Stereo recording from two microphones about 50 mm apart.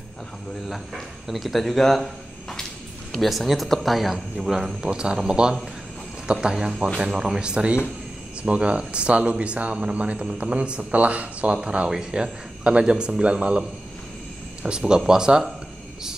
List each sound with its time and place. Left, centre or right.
0.7 s speech: centre
3.1 s speech: centre